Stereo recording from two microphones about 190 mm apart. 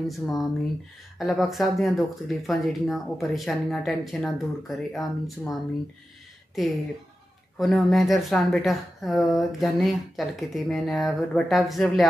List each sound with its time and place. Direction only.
0.1 s speech: centre (ahead or behind)